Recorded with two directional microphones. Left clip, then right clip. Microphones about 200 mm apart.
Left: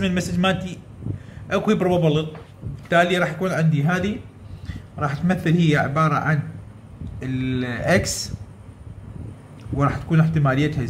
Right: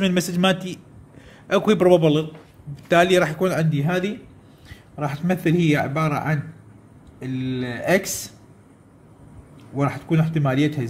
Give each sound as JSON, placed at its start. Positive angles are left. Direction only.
{"t": 0.0, "sound": "a man's voice", "side_deg": -40}
{"t": 9.8, "sound": "a man's voice", "side_deg": -20}